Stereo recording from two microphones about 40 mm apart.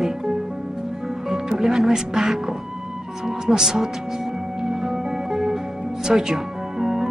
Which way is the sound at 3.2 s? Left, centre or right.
Centre.